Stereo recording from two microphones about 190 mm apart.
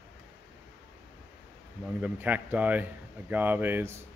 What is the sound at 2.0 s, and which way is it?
Speech, 10° right (ahead or behind).